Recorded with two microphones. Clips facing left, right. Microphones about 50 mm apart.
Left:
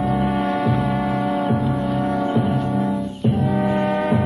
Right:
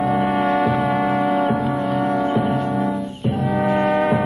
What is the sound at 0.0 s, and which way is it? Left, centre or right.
Music, centre.